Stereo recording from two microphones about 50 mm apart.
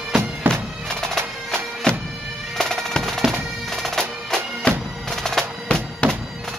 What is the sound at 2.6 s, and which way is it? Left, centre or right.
Drum, centre.